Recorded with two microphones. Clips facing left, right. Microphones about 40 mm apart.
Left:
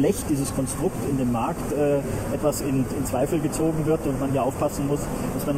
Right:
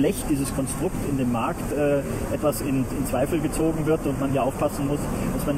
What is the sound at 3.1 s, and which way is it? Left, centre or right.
Speech, centre.